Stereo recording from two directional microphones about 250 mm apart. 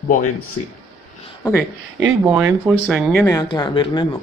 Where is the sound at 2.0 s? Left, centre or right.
Centre.